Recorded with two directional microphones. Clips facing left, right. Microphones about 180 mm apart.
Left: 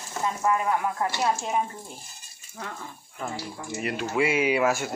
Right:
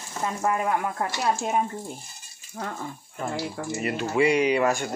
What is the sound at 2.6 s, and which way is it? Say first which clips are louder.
Speech: right 5 dB; 45° right (ahead or behind).